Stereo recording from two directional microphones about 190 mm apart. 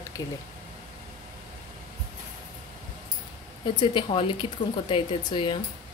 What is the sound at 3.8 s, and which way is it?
Speech, 25° left (ahead or behind).